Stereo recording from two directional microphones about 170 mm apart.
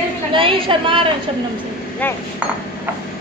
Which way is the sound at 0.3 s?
30° right (ahead or behind).